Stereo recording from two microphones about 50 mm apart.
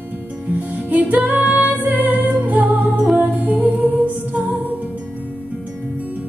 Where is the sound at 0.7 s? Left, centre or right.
Right.